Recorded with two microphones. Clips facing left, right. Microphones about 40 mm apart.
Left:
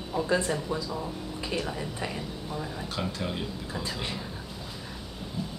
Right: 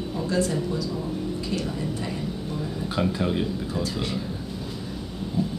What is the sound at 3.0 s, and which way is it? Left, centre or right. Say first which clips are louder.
Speech: right 9 dB; centre.